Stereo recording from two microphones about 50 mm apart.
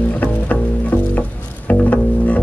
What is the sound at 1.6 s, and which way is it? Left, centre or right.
Music, left.